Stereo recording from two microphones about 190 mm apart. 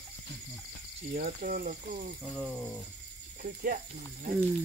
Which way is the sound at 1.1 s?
45° right (ahead or behind).